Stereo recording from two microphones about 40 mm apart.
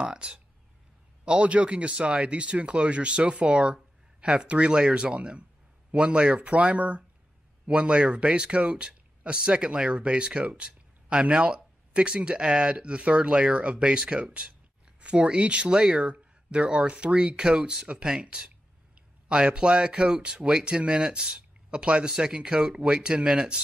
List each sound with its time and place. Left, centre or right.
0.0 s speech: right